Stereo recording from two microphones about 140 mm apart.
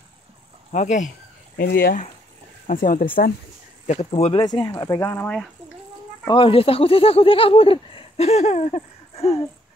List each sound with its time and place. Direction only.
0.7 s speech: 60° left (ahead or behind)
1.6 s speech: 90° left
2.6 s speech: 80° left
3.8 s speech: 55° left (ahead or behind); by 4.6 s 35° left (ahead or behind)
4.7 s speech: 25° left (ahead or behind)
5.2 s speech: 5° left (ahead or behind)
6.2 s speech: 40° left (ahead or behind)